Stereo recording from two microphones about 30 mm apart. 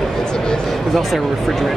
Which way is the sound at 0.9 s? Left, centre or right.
Centre.